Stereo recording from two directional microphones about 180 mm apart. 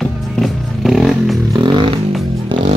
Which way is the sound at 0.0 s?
Centre (ahead or behind).